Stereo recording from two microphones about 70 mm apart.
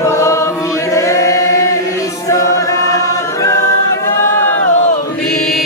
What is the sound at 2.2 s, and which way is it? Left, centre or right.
Choir, left.